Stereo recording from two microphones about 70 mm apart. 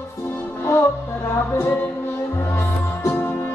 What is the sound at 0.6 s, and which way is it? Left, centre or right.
Music, left.